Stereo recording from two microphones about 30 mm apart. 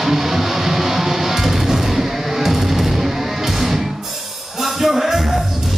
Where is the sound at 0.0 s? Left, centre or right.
Centre.